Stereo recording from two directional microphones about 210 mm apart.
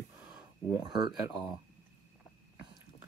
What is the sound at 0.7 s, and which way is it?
Speech, 20° right (ahead or behind).